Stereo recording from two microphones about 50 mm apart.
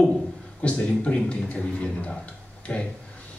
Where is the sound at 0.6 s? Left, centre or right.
Left.